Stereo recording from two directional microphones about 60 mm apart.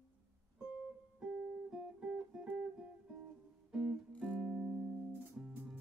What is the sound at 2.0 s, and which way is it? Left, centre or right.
Guitar, centre.